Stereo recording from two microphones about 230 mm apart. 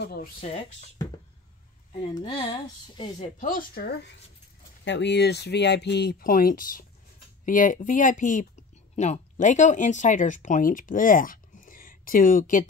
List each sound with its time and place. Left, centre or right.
0.0 s speech: left
0.4 s speech: left
2.1 s speech: left